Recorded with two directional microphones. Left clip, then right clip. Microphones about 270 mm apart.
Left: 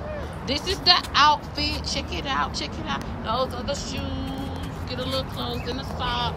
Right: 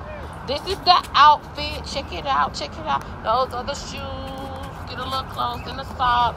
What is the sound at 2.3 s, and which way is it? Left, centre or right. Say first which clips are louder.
A woman's voice: right 6 dB; centre.